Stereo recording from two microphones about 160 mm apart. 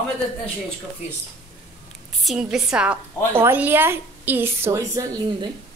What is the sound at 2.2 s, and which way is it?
A woman's voice, centre (ahead or behind).